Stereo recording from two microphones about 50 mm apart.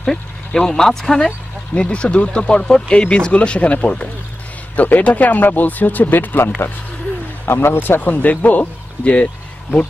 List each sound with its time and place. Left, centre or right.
0.0 s speech: centre
1.7 s speech: left
7.4 s speech: left
8.0 s speech: left